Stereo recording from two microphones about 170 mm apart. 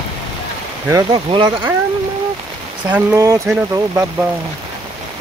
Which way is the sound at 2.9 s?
15° right (ahead or behind).